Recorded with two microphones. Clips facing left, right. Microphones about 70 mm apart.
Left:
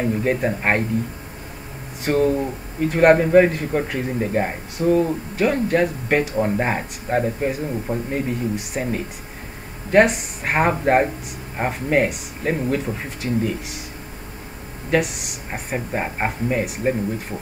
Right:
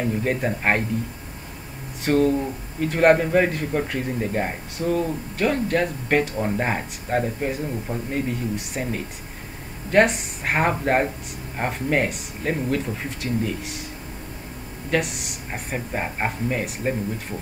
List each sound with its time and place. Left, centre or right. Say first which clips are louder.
0.2 s a man's voice: left 3 dB; centre
2.0 s a man's voice: left 1 dB; centre
14.9 s a man's voice: left 3 dB; centre